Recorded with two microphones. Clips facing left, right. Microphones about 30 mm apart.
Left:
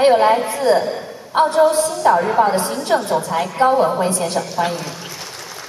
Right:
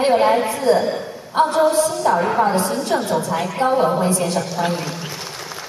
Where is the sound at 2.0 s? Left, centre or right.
Left.